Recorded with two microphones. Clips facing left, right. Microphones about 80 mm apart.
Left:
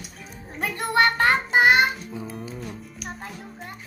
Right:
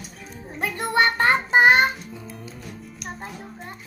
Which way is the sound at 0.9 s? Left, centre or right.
Right.